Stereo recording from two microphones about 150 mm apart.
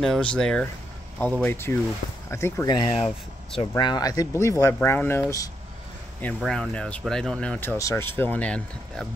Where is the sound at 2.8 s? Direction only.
30° left (ahead or behind).